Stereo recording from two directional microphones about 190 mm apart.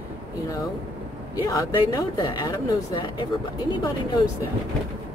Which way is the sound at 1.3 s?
20° left (ahead or behind).